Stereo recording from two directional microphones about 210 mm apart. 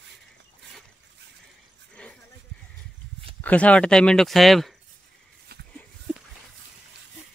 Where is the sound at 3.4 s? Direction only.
5° left (ahead or behind).